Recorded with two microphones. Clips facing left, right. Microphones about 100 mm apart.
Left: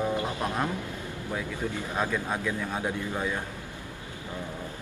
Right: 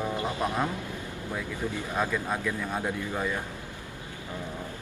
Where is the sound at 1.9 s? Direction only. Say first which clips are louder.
Right 1 dB; 5° left (ahead or behind).